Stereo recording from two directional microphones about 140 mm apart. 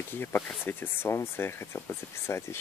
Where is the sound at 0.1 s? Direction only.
15° left (ahead or behind).